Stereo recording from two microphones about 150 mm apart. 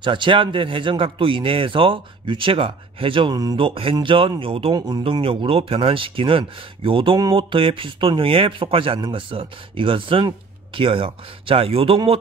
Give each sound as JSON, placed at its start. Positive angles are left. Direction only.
{"t": 0.0, "sound": "speech", "side_deg": -35}
{"t": 4.7, "sound": "speech", "side_deg": -25}